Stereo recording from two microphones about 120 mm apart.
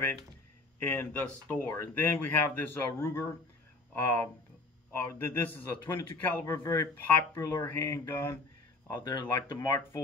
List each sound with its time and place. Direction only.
0.7 s speech: 15° left (ahead or behind)
8.9 s speech: 35° left (ahead or behind)